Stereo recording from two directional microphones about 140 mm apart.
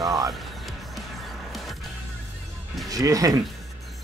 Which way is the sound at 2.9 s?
25° right (ahead or behind).